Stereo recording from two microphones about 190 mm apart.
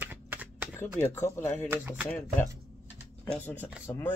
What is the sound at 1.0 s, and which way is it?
Speech, 15° left (ahead or behind).